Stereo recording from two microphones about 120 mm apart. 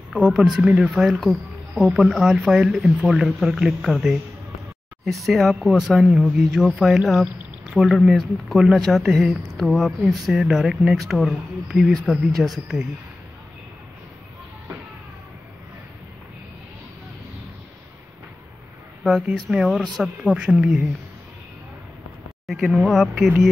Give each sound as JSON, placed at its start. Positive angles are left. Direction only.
{"t": 0.1, "sound": "speech", "side_deg": -10}
{"t": 19.0, "sound": "speech", "side_deg": -5}
{"t": 22.5, "sound": "speech", "side_deg": -5}